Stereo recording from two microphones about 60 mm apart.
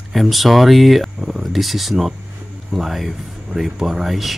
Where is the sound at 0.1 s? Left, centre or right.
Centre.